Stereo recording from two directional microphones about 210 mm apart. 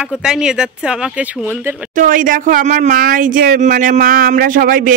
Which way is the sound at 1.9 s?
40° right (ahead or behind).